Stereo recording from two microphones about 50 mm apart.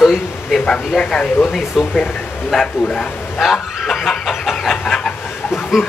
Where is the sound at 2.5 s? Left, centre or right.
Centre.